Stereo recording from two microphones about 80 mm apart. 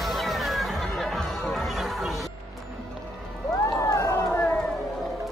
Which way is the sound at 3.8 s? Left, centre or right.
Left.